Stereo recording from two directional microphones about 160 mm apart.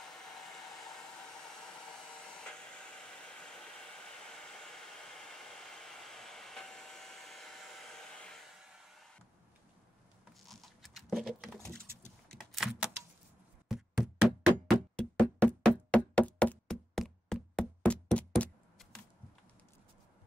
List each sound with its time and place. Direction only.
0.0 s hair dryer: 5° left (ahead or behind)
8.9 s a sound: centre (ahead or behind)
10.4 s patter: centre (ahead or behind)
12.4 s door: centre (ahead or behind)
13.7 s knock: 5° right (ahead or behind)